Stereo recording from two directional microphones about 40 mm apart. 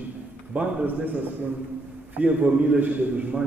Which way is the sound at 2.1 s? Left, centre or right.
Right.